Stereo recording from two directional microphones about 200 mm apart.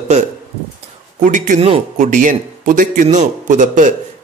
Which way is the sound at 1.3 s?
40° right (ahead or behind).